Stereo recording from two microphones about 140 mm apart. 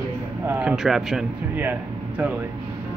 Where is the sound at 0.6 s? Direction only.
5° right (ahead or behind).